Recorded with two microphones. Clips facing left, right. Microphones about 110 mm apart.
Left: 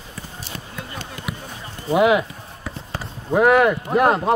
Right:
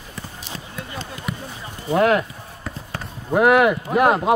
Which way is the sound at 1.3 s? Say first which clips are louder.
Right 2 dB; 5° left (ahead or behind).